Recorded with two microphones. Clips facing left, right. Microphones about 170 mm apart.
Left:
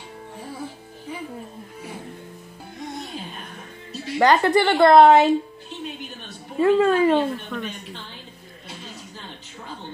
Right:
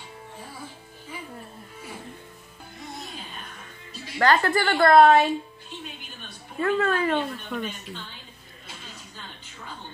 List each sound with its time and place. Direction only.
2.8 s music: centre (ahead or behind)
4.2 s a woman's voice: 20° left (ahead or behind)
6.6 s a woman's voice: 20° left (ahead or behind)
7.5 s a woman's voice: 5° right (ahead or behind)